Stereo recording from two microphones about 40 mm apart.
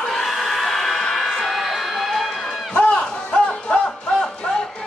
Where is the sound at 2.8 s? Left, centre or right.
Left.